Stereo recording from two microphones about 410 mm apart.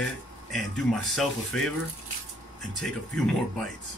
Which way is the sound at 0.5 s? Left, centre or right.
Centre.